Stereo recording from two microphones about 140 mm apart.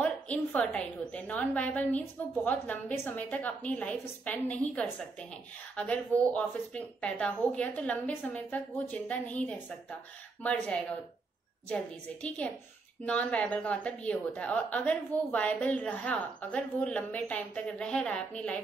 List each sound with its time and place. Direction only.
0.0 s a woman's voice: 10° left (ahead or behind)
6.3 s a woman's voice: 10° left (ahead or behind)